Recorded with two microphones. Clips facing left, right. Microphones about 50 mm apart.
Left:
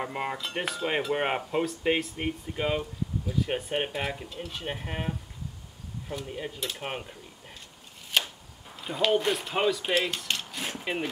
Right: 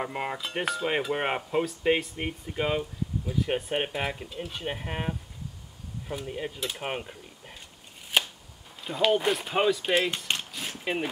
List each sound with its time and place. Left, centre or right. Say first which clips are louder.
0.0 s cutlery: even; centre
3.3 s speech: right 2 dB; centre
8.1 s chopping: right 1 dB; centre
8.8 s cutlery: right 1 dB; centre
10.1 s cutlery: right 1 dB; right
10.5 s a sound: left 2 dB; centre
10.8 s speech: right 2 dB; centre